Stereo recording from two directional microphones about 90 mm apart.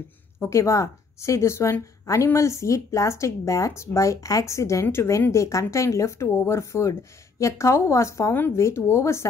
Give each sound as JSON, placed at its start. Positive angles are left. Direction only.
{"t": 0.4, "sound": "a woman's voice", "side_deg": 30}